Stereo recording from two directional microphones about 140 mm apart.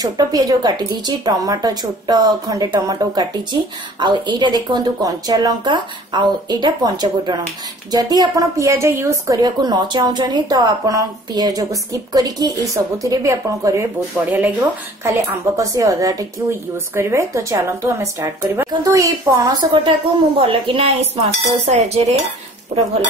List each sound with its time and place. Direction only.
0.0 s a woman's voice: 25° right (ahead or behind); by 21.1 s 40° right (ahead or behind)
21.6 s a woman's voice: 55° right (ahead or behind)